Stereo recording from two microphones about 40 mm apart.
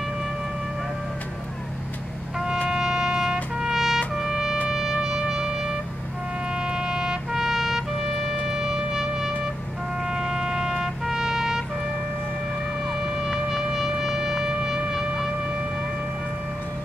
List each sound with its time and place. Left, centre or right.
2.7 s music: centre
3.5 s trumpet: centre
4.2 s music: centre
7.3 s trumpet: centre
8.5 s shofar: centre
10.1 s trumpet: centre
13.0 s music: centre